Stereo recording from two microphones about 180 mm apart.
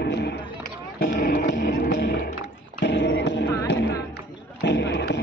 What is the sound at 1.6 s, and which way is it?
Music, 70° left (ahead or behind).